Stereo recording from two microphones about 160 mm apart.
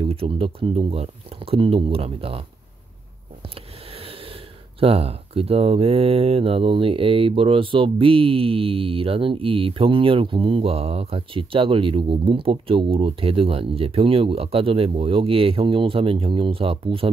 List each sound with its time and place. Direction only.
0.0 s speech: 35° right (ahead or behind)
3.4 s speech: 35° right (ahead or behind)